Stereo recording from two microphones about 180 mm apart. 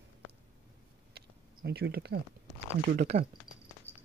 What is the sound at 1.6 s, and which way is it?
Speech, 65° right (ahead or behind).